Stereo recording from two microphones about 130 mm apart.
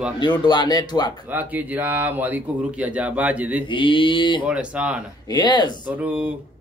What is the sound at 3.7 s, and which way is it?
Speech, 40° left (ahead or behind).